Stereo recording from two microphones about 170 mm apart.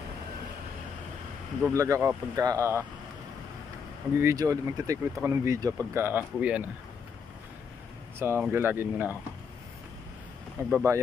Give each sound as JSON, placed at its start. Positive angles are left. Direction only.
{"t": 1.7, "sound": "speech", "side_deg": -20}
{"t": 4.1, "sound": "speech", "side_deg": -15}
{"t": 8.2, "sound": "speech", "side_deg": -10}
{"t": 10.7, "sound": "speech", "side_deg": -15}